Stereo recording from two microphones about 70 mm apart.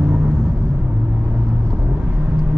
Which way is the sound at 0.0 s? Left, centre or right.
Centre.